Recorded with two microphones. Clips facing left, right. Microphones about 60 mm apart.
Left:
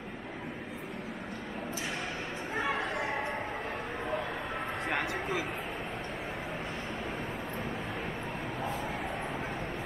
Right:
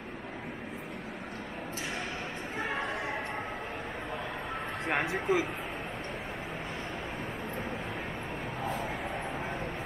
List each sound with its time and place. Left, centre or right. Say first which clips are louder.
4.9 s speech: right 6 dB; centre